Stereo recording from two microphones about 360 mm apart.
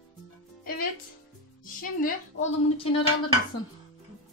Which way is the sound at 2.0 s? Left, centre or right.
Centre.